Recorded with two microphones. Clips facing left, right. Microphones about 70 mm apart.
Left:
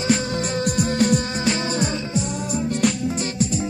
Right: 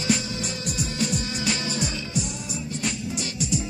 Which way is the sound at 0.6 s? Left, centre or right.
Left.